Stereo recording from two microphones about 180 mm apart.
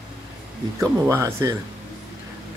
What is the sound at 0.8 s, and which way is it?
Speech, 15° right (ahead or behind).